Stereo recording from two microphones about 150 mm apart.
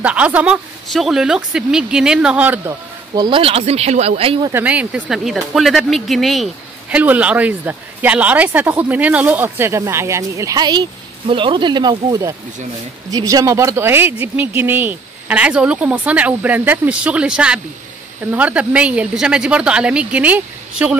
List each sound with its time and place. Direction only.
0.0 s speech: 10° right (ahead or behind)
3.2 s speech: 35° right (ahead or behind)
4.5 s speech: 10° right (ahead or behind)